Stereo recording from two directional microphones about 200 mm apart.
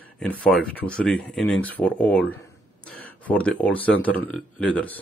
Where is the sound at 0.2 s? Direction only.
5° left (ahead or behind).